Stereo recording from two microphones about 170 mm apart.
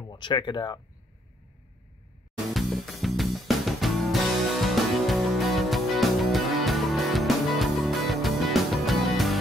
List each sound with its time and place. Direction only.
0.1 s speech: 25° left (ahead or behind)
2.5 s music: centre (ahead or behind)